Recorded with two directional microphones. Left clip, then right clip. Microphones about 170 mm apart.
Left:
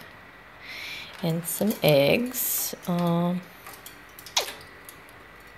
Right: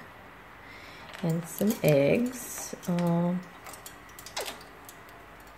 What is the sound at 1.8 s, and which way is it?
Speech, 5° left (ahead or behind).